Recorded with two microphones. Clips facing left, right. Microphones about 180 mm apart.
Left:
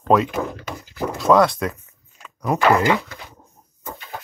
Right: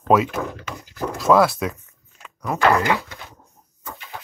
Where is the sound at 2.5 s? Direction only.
15° left (ahead or behind).